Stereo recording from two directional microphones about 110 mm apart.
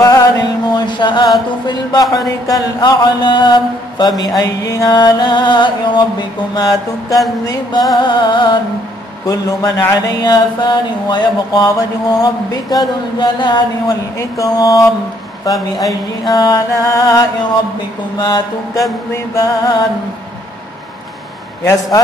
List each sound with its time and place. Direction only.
0.0 s mantra: 35° left (ahead or behind)
7.9 s music: 45° left (ahead or behind)
9.2 s mantra: 35° left (ahead or behind)
10.2 s mantra: 40° left (ahead or behind)
14.4 s mantra: 30° left (ahead or behind)
16.3 s mantra: 35° left (ahead or behind)
18.2 s mantra: 40° left (ahead or behind)